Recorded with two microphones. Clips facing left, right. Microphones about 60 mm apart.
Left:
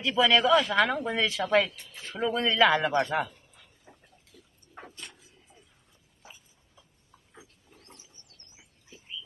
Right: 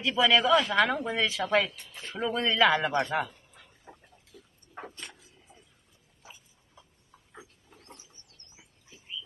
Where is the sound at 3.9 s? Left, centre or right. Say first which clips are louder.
Right 5 dB; right.